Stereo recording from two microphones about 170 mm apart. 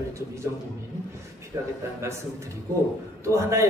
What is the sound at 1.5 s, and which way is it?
Speech, 15° right (ahead or behind).